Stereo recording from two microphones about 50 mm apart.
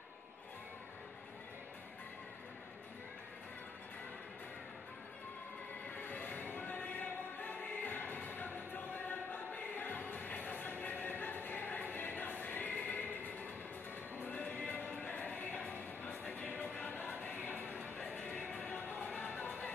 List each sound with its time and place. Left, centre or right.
5.9 s music: left
17.8 s music: left
18.7 s music: left